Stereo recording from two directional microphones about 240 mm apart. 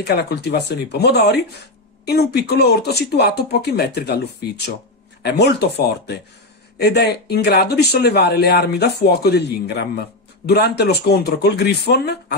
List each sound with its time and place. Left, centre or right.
0.0 s speech: left
5.2 s speech: left